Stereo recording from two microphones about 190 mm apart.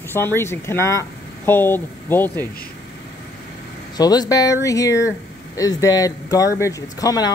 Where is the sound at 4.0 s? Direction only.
20° left (ahead or behind).